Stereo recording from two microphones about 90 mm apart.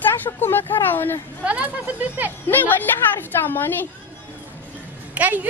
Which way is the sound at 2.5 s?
20° left (ahead or behind).